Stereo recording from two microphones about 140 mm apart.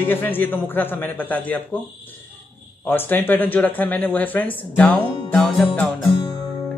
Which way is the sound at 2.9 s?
15° left (ahead or behind).